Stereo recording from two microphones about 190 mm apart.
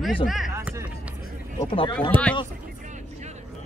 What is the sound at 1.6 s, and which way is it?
Speech, 30° left (ahead or behind).